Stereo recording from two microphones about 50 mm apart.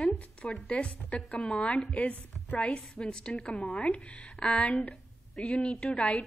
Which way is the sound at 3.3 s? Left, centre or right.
Left.